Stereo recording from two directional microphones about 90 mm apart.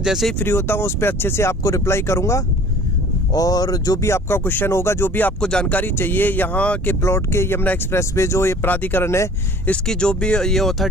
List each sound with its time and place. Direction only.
0.0 s speech: 5° right (ahead or behind)
0.4 s speech: 25° left (ahead or behind)
3.3 s speech: 45° left (ahead or behind)
4.0 s speech: 30° left (ahead or behind)
5.4 s speech: 10° left (ahead or behind)
7.0 s speech: 30° left (ahead or behind)
9.0 s speech: 30° left (ahead or behind)
9.7 s speech: 10° left (ahead or behind)